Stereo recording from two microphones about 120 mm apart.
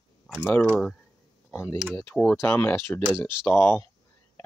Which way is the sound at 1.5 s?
25° left (ahead or behind).